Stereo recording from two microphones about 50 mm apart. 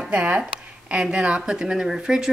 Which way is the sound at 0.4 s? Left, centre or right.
Centre.